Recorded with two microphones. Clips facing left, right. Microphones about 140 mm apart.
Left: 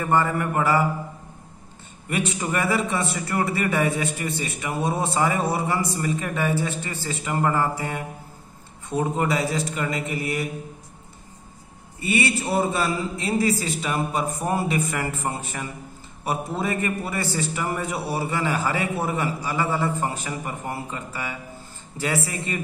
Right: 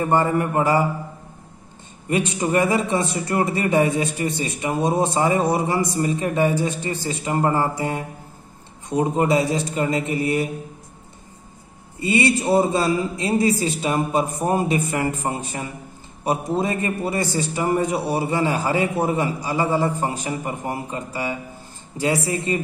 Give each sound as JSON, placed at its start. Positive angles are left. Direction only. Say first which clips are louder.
{"t": 0.0, "sound": "a man's voice", "louder": "right 3 dB", "side_deg": -20}
{"t": 2.0, "sound": "a man's voice", "louder": "right 4 dB", "side_deg": -20}
{"t": 12.0, "sound": "a man's voice", "louder": "right 4 dB", "side_deg": -20}
{"t": 16.5, "sound": "a man's voice", "louder": "right 3 dB", "side_deg": -20}